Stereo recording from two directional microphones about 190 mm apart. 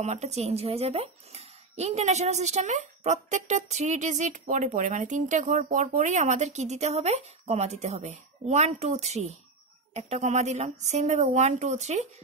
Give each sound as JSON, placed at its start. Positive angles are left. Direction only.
{"t": 0.0, "sound": "speech", "side_deg": -35}